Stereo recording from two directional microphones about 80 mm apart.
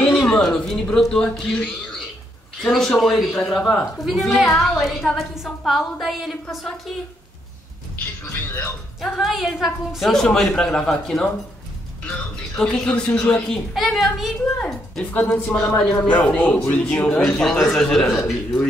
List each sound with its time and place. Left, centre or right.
0.0 s a sound: centre
0.4 s a man's voice: centre
8.5 s speech: left
9.0 s a woman's voice: centre
12.5 s a man's voice: centre
14.6 s a man's voice: centre